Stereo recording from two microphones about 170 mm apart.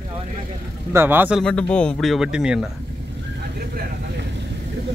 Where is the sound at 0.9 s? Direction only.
15° right (ahead or behind).